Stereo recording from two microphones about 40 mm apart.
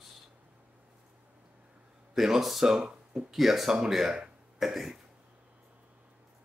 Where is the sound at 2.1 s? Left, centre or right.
Centre.